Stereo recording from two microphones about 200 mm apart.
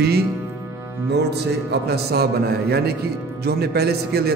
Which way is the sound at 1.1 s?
55° right (ahead or behind).